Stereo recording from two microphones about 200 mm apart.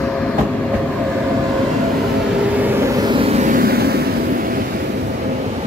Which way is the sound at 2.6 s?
10° right (ahead or behind).